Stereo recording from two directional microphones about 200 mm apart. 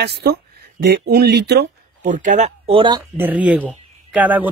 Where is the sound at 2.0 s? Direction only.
40° right (ahead or behind).